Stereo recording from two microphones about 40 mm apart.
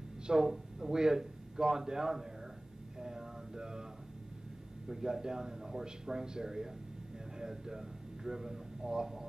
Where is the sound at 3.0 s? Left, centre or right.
Centre.